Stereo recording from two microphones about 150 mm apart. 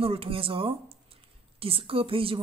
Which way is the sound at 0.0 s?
40° right (ahead or behind).